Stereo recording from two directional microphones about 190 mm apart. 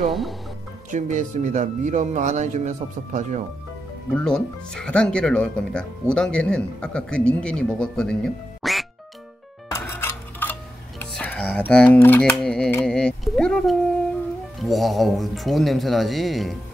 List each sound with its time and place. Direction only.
0.1 s speech: centre (ahead or behind)
0.9 s speech: 40° right (ahead or behind)
4.1 s speech: 5° left (ahead or behind)
9.7 s music: 10° left (ahead or behind)
14.6 s speech: centre (ahead or behind)